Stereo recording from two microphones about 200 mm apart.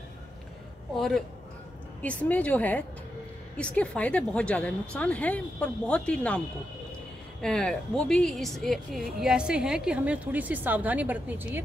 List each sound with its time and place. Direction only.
0.9 s a woman's voice: centre (ahead or behind)
7.4 s a woman's voice: 5° left (ahead or behind)